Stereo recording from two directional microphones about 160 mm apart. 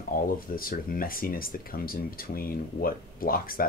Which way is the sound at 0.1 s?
60° left (ahead or behind).